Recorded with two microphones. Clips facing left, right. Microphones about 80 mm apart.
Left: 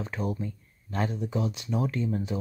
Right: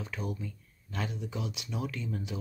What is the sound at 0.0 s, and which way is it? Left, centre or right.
Speech, left.